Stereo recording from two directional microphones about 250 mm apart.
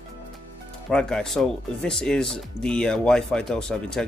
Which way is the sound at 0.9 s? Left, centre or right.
Centre.